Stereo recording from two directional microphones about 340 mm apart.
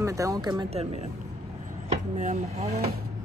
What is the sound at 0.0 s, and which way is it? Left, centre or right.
Speech, centre.